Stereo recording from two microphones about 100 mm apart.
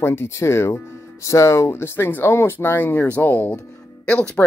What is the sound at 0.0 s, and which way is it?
Speech, 25° left (ahead or behind).